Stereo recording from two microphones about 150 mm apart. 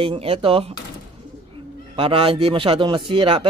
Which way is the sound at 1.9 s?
35° right (ahead or behind).